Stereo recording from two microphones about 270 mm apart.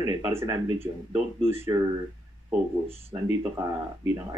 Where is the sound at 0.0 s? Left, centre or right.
Centre.